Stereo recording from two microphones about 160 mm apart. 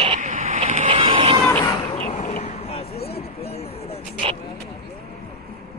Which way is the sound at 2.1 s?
45° left (ahead or behind).